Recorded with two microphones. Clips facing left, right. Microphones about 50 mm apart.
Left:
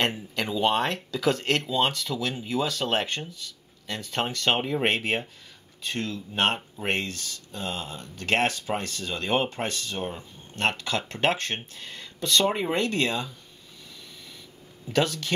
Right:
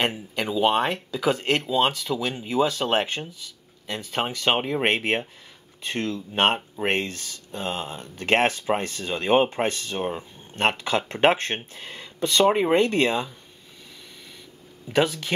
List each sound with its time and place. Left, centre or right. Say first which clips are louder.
0.0 s speech: right 1 dB; centre
5.8 s speech: right 3 dB; right
14.9 s speech: right 3 dB; centre